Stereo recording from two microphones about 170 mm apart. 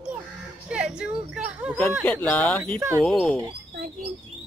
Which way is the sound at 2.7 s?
15° right (ahead or behind).